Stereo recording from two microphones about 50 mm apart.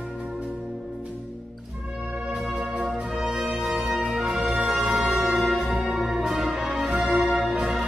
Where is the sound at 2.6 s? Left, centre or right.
Right.